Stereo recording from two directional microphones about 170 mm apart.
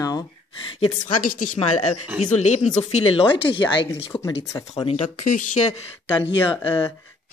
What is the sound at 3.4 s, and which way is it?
Speech, 30° left (ahead or behind).